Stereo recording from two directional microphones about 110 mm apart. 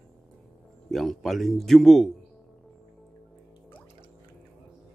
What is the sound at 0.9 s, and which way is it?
A man's voice, centre (ahead or behind).